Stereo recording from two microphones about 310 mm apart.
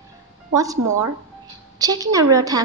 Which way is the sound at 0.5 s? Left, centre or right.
Centre.